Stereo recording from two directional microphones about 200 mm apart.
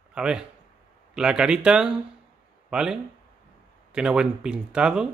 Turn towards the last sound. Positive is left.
turn(degrees=-5)  # may be behind; listen again after turning